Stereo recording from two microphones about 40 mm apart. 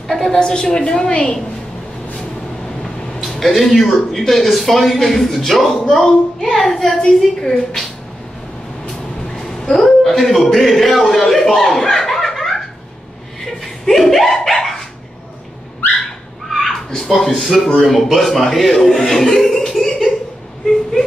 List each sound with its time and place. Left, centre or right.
0.3 s a woman's voice: centre
3.3 s speech: centre
9.3 s a sound: centre
10.4 s speech: centre
11.9 s laughter: centre
12.2 s giggle: centre
13.4 s dog: centre
16.5 s a sound: centre
17.7 s a man's voice: centre